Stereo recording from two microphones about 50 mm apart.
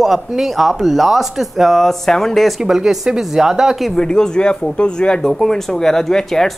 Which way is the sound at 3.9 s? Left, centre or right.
Centre.